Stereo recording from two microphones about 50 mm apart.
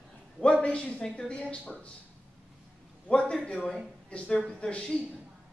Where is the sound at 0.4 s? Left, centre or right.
Left.